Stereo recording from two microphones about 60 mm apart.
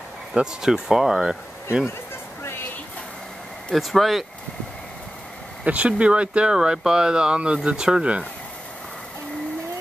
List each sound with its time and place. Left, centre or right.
0.3 s speech: centre
3.7 s speech: centre
5.6 s speech: right